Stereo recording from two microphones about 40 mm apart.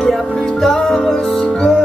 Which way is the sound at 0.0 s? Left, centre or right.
Centre.